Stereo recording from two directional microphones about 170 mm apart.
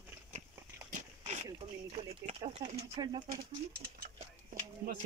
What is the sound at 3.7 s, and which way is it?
Speech, 65° right (ahead or behind).